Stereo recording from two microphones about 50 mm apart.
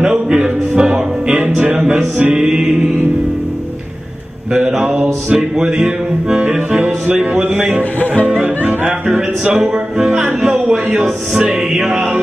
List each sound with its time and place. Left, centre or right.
0.0 s music: centre
4.6 s music: centre
4.8 s music: right
9.6 s music: centre